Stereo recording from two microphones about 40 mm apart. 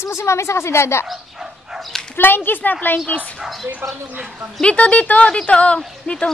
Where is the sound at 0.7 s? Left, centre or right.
Left.